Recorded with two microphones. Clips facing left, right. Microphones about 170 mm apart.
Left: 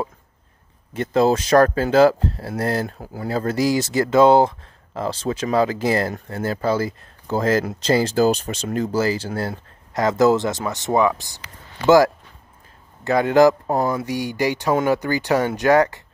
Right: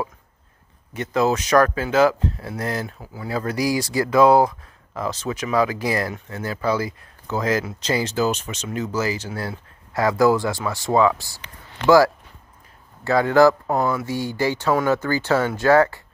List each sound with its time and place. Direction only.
1.1 s speech: 30° left (ahead or behind)
3.3 s speech: 25° left (ahead or behind)
13.7 s speech: 35° left (ahead or behind)
14.0 s speech: 15° left (ahead or behind)